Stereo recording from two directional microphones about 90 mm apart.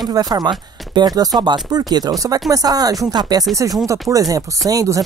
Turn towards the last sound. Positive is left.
turn(degrees=-40)  # may be behind; listen again after turning